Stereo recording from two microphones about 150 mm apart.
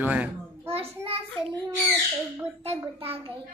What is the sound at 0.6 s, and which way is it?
Speech, 40° right (ahead or behind).